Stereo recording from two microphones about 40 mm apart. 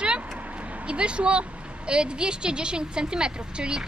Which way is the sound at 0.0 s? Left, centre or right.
Right.